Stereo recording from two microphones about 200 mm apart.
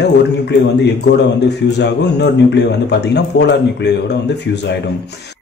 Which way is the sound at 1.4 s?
60° left (ahead or behind).